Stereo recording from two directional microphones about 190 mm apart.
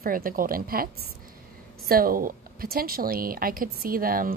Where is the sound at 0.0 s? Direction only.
50° right (ahead or behind).